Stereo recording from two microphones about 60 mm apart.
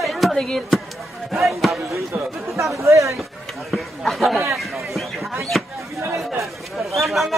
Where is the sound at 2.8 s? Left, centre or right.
Right.